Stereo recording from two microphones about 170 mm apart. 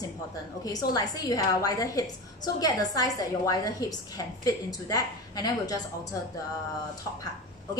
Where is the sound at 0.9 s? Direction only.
20° left (ahead or behind).